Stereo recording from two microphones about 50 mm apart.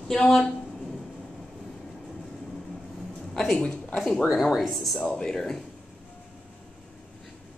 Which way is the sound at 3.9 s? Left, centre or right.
Centre.